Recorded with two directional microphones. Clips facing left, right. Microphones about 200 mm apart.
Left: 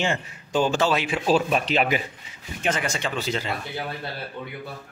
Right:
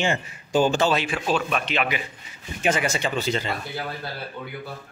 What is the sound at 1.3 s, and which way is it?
Speech, 35° left (ahead or behind).